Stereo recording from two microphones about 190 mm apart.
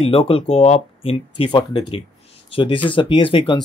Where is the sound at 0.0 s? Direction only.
30° left (ahead or behind).